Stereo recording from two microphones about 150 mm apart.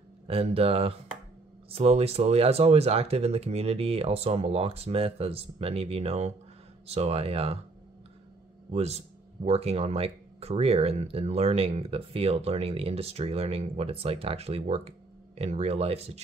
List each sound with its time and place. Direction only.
0.3 s speech: 40° right (ahead or behind)
8.7 s speech: 45° right (ahead or behind)